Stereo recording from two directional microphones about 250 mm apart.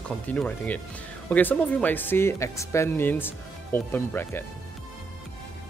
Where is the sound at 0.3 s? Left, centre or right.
Centre.